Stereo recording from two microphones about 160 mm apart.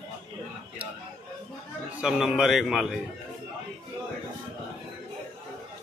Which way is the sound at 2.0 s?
5° right (ahead or behind).